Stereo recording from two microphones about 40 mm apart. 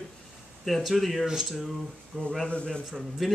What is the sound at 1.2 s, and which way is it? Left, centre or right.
Speech, centre.